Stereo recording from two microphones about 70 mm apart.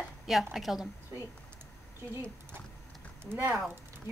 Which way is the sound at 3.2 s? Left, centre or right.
Right.